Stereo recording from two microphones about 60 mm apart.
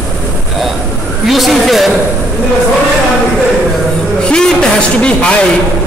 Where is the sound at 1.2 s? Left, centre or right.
Centre.